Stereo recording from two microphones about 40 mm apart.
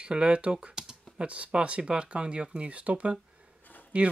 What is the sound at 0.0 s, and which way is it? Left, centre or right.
Speech, right.